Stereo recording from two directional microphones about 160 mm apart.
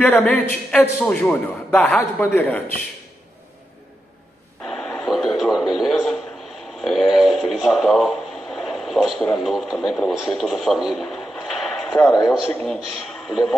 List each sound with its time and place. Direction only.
0.0 s a man's voice: 10° left (ahead or behind)
4.6 s a sound: 5° left (ahead or behind)
5.8 s speech: centre (ahead or behind)
12.0 s speech: 20° left (ahead or behind)
12.3 s speech: centre (ahead or behind)